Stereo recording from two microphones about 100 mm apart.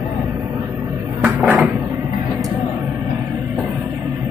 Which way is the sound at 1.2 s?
20° right (ahead or behind).